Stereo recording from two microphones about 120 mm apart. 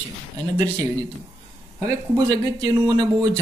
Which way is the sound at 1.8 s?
30° right (ahead or behind).